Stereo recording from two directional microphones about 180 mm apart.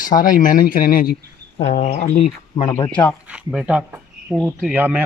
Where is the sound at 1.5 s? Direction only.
40° left (ahead or behind).